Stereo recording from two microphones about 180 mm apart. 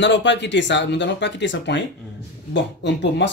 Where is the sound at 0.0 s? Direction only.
80° left.